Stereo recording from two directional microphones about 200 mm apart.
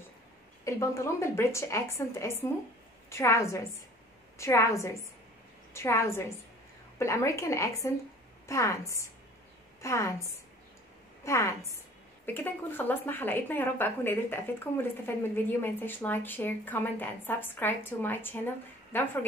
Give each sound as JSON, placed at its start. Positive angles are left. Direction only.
{"t": 0.7, "sound": "a woman's voice", "side_deg": 15}
{"t": 11.2, "sound": "a woman's voice", "side_deg": 15}